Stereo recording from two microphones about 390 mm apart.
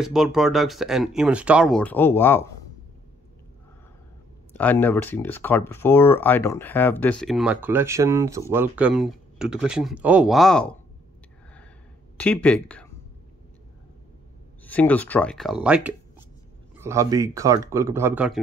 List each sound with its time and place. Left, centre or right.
0.0 s speech: centre
4.6 s speech: centre
12.2 s speech: centre
14.6 s speech: centre